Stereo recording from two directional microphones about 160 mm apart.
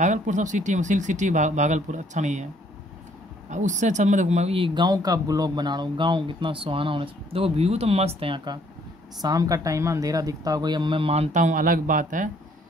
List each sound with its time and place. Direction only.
0.0 s speech: 50° right (ahead or behind)
3.4 s speech: 50° right (ahead or behind); by 8.5 s 35° right (ahead or behind)
9.2 s speech: 20° right (ahead or behind)
11.3 s speech: 55° right (ahead or behind)